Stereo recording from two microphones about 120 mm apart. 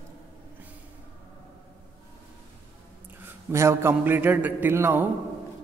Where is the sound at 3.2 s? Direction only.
25° right (ahead or behind).